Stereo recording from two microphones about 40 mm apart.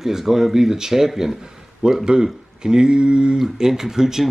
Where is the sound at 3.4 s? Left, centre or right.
Centre.